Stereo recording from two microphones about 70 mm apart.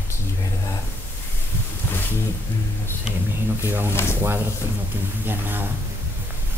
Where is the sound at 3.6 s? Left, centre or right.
Right.